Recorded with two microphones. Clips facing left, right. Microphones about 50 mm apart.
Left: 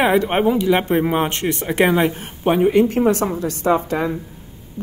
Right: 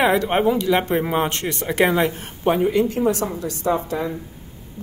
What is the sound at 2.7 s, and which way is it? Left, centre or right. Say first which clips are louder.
A woman's voice: left 4 dB; left.